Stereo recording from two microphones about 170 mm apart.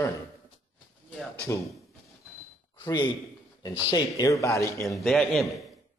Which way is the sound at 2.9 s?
25° left (ahead or behind).